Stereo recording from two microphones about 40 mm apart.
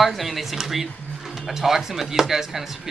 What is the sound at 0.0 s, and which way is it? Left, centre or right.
Speech, centre.